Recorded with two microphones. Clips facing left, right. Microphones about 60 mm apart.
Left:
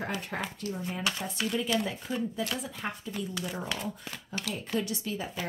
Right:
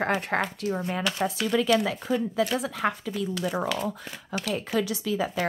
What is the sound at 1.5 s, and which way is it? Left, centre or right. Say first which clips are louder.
Speech: right 7 dB; right.